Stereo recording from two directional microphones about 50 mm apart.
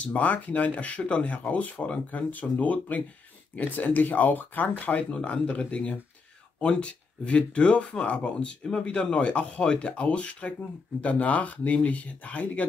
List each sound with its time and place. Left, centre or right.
0.0 s speech: left
5.1 s speech: left